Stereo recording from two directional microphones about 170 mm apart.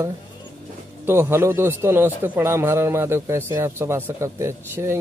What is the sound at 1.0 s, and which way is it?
A man's voice, 15° right (ahead or behind).